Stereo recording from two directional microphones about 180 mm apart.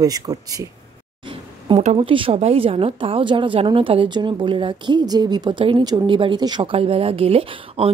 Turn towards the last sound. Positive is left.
turn(degrees=-35)  # may be behind; listen again after turning